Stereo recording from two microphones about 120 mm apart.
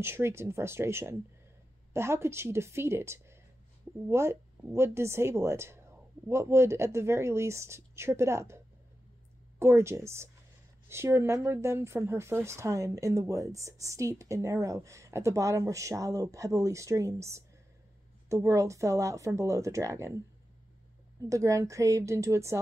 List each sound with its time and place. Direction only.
0.0 s speech: 20° right (ahead or behind)
9.6 s speech: 20° right (ahead or behind)
21.2 s speech: 25° right (ahead or behind)